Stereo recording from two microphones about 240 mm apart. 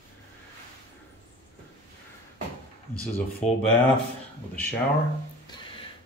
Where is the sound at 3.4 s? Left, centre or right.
Left.